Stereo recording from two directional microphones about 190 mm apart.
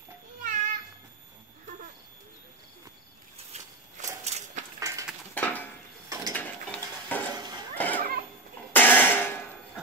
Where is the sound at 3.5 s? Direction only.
35° right (ahead or behind).